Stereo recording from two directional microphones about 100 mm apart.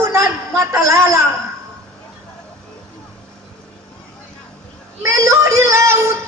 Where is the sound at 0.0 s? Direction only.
30° right (ahead or behind).